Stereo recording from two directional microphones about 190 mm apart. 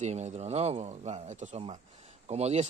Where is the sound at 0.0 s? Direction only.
35° right (ahead or behind).